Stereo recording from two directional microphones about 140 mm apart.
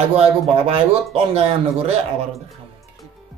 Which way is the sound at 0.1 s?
45° right (ahead or behind).